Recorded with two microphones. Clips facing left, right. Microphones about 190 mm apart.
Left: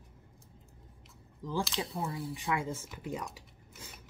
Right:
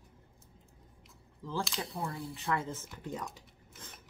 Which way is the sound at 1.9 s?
Centre (ahead or behind).